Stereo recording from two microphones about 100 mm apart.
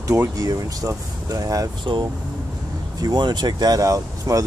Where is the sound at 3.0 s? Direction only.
45° right (ahead or behind).